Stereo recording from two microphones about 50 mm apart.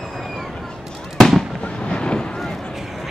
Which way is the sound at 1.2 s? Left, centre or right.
Centre.